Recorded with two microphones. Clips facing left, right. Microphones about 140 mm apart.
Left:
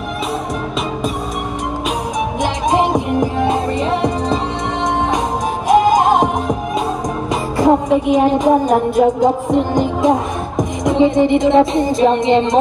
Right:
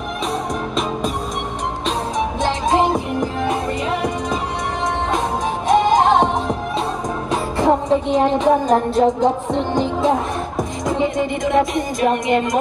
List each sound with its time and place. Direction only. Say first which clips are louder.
2.4 s music: left 1 dB; 15° left (ahead or behind)
5.7 s music: left 3 dB; 10° left (ahead or behind)
7.5 s music: left 4 dB; 10° left (ahead or behind)